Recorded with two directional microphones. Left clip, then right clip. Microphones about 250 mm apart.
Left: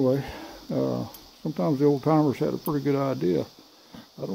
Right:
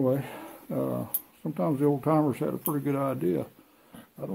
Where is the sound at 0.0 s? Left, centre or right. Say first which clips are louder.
Left 3 dB; left.